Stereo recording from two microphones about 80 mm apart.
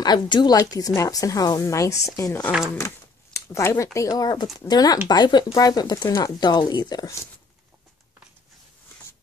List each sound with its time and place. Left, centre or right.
0.0 s speech: left
3.3 s speech: left
4.1 s speech: left
5.5 s speech: left